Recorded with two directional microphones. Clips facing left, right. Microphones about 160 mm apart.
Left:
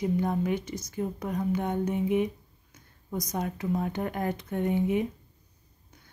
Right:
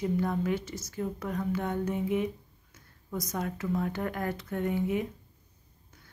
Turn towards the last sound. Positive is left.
turn(degrees=20)  # may be behind; listen again after turning